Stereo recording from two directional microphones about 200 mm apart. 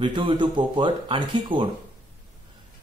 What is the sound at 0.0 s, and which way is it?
A man's voice, 25° right (ahead or behind).